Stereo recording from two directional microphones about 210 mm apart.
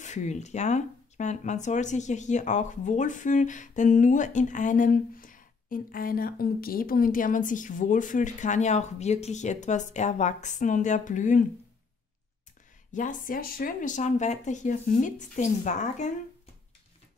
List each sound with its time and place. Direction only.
0.0 s speech: 35° left (ahead or behind)
12.9 s speech: 40° left (ahead or behind)